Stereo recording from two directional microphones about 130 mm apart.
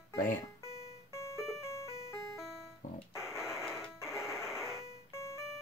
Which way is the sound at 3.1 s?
Centre (ahead or behind).